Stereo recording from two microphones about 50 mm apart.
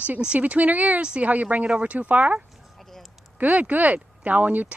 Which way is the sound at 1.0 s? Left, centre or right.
Centre.